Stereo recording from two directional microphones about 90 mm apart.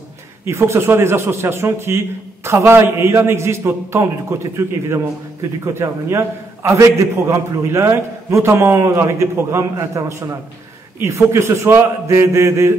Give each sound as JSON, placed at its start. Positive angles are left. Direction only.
{"t": 0.5, "sound": "a man's voice", "side_deg": -30}